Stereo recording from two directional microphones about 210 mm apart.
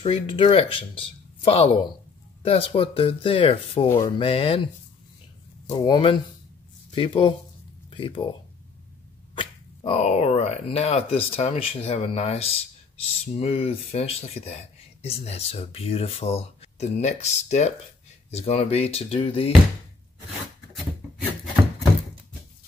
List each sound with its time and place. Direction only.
0.0 s speech: 25° left (ahead or behind)
3.9 s speech: 15° left (ahead or behind)
4.3 s speech: 25° left (ahead or behind)
5.7 s speech: 20° left (ahead or behind)
9.4 s speech: 25° left (ahead or behind)